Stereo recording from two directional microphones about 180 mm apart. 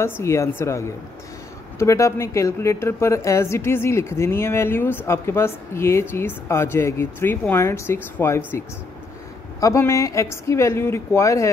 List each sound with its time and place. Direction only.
0.0 s a woman's voice: 15° left (ahead or behind)
9.6 s a woman's voice: 15° left (ahead or behind)